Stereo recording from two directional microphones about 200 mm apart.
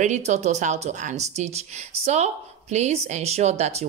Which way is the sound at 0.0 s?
35° right (ahead or behind).